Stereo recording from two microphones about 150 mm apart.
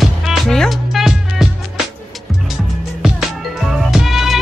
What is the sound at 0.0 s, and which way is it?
Music, centre (ahead or behind).